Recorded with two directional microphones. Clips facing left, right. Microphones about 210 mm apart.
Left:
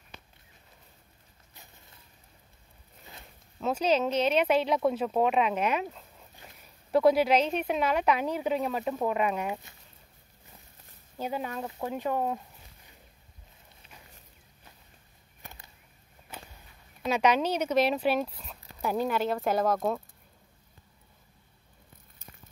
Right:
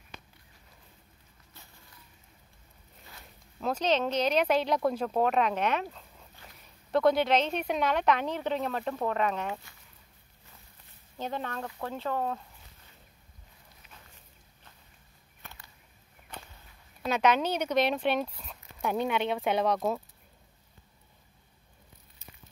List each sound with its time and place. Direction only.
1.5 s a sound: 20° left (ahead or behind)
3.5 s speech: 5° left (ahead or behind)
11.1 s speech: 10° left (ahead or behind)
15.4 s a sound: 20° left (ahead or behind)
16.3 s walk: 5° left (ahead or behind)
17.0 s speech: centre (ahead or behind)